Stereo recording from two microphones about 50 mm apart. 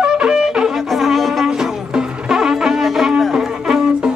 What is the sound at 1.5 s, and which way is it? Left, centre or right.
Music, centre.